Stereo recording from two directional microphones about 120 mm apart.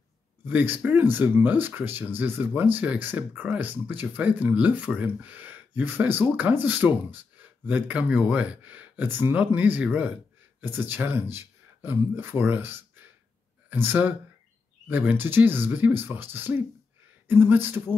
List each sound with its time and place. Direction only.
0.5 s speech: 15° right (ahead or behind)